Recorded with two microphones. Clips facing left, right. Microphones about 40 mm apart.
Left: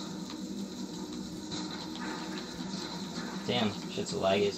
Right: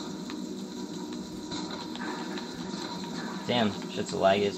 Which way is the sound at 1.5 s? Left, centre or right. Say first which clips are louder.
Right 4 dB; right.